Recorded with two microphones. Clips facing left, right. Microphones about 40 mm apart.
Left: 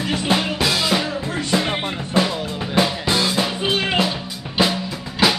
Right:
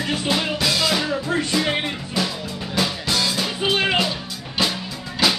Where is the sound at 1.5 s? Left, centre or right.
Left.